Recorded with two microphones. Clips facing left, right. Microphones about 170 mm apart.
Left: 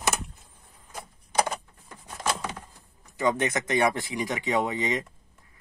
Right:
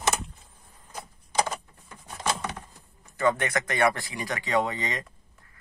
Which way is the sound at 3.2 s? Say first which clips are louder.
Even; 15° left (ahead or behind).